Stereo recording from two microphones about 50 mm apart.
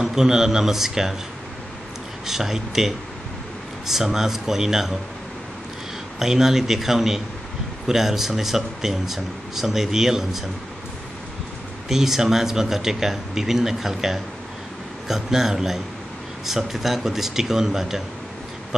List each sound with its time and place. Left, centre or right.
0.0 s speech: centre
2.2 s speech: centre
6.1 s speech: centre
11.9 s speech: centre